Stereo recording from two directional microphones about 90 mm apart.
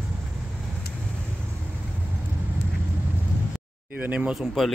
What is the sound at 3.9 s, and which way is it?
Speech, 20° right (ahead or behind).